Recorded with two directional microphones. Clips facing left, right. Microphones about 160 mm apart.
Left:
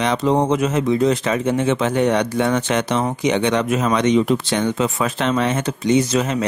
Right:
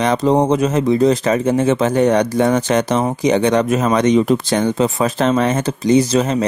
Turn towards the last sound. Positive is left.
turn(degrees=-35)  # may be behind; listen again after turning